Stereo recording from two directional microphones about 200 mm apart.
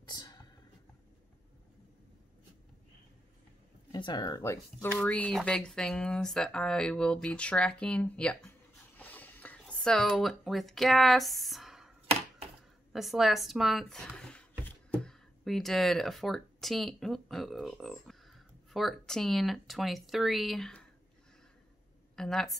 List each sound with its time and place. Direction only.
0.0 s whispering: 20° left (ahead or behind)
3.9 s speech: 20° left (ahead or behind)
4.9 s speech: 5° left (ahead or behind)
12.9 s speech: centre (ahead or behind)
22.1 s a woman's voice: centre (ahead or behind)